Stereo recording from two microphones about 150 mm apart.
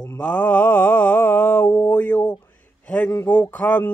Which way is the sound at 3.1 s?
10° left (ahead or behind).